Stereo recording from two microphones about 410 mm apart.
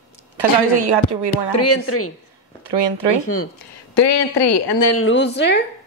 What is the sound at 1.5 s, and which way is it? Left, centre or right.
Speech, left.